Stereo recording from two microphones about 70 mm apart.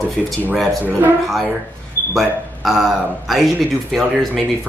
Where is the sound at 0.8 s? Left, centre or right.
Right.